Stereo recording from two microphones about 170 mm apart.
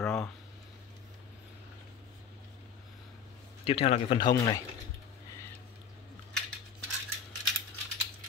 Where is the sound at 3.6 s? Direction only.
35° left (ahead or behind).